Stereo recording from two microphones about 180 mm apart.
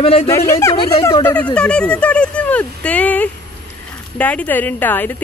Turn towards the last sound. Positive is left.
turn(degrees=10)  # may be behind; listen again after turning